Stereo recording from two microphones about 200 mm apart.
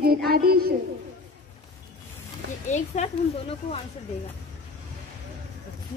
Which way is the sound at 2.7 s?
35° left (ahead or behind).